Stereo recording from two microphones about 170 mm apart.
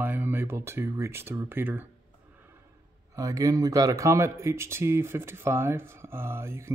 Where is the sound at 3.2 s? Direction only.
20° right (ahead or behind).